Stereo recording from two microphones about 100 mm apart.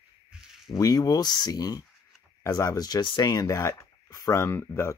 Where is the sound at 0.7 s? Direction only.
40° left (ahead or behind).